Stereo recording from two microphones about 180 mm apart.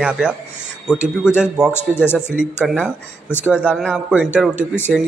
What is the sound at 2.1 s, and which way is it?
A man's voice, 5° right (ahead or behind).